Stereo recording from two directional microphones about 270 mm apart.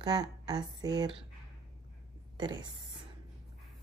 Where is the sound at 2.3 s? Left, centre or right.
Centre.